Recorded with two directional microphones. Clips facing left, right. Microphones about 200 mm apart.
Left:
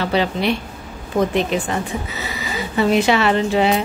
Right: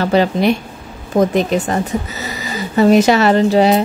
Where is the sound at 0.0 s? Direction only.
45° right (ahead or behind).